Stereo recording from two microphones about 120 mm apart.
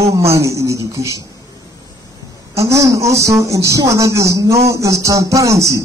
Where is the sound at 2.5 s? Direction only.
25° right (ahead or behind).